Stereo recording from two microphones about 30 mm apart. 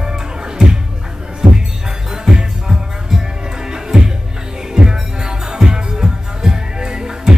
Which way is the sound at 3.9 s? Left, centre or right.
Right.